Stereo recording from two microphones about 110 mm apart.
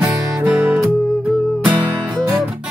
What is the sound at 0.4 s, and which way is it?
Music, 15° right (ahead or behind).